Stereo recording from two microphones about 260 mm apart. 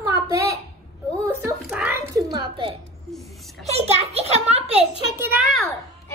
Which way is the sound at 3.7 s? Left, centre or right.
Right.